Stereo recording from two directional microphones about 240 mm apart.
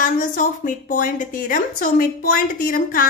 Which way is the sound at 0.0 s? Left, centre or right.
Left.